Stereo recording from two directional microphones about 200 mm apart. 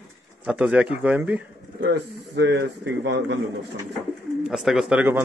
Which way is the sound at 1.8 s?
60° right (ahead or behind).